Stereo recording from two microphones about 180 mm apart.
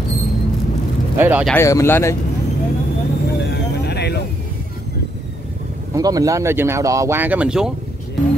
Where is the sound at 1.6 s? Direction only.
15° left (ahead or behind).